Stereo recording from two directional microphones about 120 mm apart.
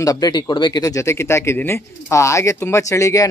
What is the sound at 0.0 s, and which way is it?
Speech, 30° left (ahead or behind).